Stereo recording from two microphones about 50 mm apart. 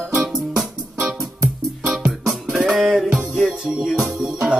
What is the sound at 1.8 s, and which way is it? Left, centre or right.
Music, centre.